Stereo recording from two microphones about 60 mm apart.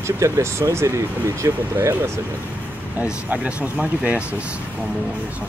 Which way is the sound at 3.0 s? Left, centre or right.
Right.